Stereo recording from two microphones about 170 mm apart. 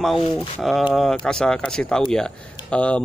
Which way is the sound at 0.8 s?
Centre (ahead or behind).